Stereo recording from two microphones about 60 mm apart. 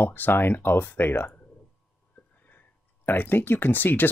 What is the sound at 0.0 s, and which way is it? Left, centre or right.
Speech, left.